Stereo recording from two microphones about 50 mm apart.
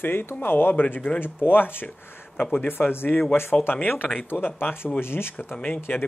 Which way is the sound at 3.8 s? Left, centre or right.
Left.